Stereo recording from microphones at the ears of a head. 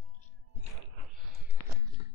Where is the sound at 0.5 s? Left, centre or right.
Right.